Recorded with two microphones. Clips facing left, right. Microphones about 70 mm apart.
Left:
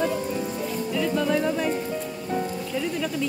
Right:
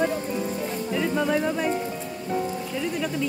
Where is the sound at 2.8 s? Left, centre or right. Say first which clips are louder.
Left 1 dB; centre.